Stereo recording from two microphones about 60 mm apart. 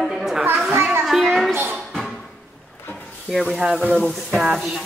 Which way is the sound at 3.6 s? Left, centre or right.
Centre.